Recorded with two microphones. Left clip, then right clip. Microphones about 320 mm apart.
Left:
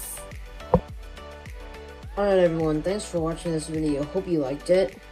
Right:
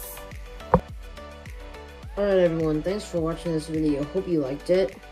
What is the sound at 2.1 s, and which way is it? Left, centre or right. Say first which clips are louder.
Speech: left 1 dB; centre.